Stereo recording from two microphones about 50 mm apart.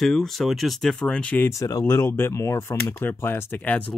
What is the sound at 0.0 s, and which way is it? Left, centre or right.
Speech, centre.